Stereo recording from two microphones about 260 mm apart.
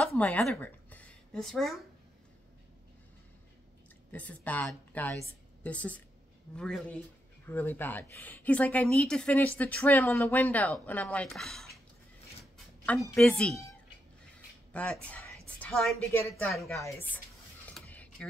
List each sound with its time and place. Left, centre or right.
0.0 s speech: centre
4.1 s a woman's voice: centre
12.8 s a woman's voice: centre
14.7 s a woman's voice: centre
17.7 s a sound: centre